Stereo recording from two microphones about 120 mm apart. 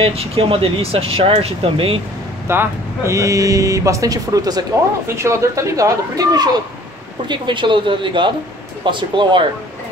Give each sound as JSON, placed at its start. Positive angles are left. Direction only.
{"t": 0.0, "sound": "speech", "side_deg": -55}
{"t": 2.4, "sound": "speech", "side_deg": -20}